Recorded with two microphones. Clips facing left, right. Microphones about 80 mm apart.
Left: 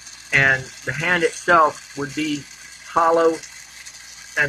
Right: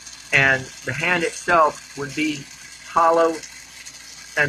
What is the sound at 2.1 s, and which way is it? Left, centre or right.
Speech, left.